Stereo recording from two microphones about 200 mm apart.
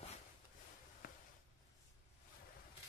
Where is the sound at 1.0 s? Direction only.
45° left (ahead or behind).